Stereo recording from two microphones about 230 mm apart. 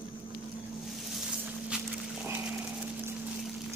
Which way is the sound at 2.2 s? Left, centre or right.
Centre.